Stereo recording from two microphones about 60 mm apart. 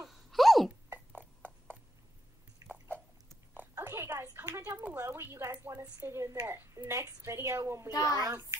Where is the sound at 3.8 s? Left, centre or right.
Right.